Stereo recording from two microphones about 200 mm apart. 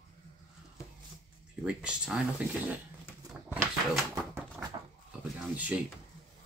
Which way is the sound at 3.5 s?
10° right (ahead or behind).